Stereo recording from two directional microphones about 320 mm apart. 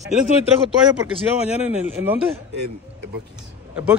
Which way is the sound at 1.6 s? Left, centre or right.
Centre.